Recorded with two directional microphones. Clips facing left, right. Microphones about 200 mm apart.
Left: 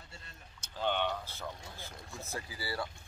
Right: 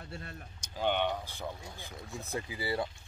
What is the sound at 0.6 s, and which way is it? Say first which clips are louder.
Speech: right 3 dB; 15° right (ahead or behind).